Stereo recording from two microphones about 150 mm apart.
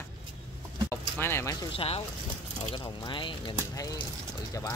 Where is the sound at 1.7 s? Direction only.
40° left (ahead or behind).